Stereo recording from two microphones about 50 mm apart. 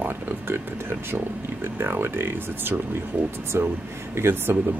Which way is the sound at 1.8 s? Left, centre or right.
Right.